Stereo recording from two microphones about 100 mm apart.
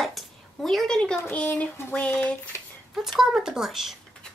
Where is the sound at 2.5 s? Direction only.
25° left (ahead or behind).